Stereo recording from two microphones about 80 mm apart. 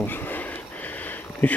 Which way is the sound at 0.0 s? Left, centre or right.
Left.